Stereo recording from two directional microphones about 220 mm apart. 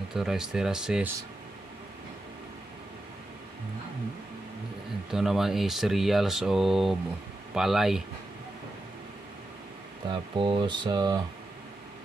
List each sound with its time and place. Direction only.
0.1 s speech: centre (ahead or behind)
5.1 s speech: centre (ahead or behind)
10.0 s speech: 20° right (ahead or behind)